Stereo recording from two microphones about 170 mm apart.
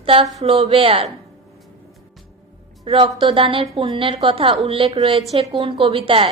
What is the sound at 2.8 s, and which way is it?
A woman's voice, 30° right (ahead or behind).